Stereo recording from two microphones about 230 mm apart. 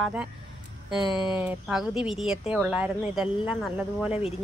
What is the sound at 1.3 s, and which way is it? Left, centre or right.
Speech, centre.